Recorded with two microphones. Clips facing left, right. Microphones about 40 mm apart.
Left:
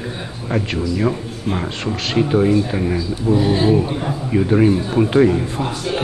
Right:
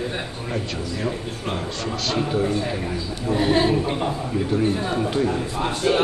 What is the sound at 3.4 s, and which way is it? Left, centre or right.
Speech, right.